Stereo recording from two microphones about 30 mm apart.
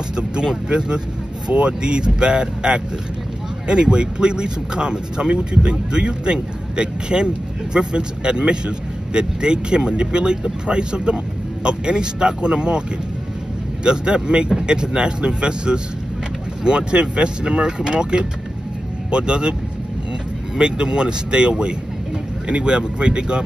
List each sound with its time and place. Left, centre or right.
0.7 s a man's voice: right
13.8 s a man's voice: right
20.5 s a man's voice: right